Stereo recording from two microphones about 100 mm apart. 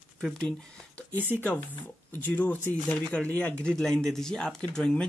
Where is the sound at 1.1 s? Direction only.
20° right (ahead or behind).